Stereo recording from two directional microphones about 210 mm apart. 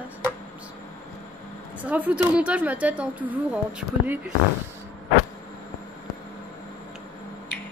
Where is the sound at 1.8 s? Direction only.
10° right (ahead or behind).